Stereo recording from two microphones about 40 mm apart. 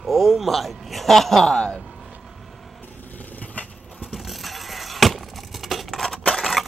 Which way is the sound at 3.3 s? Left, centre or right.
Left.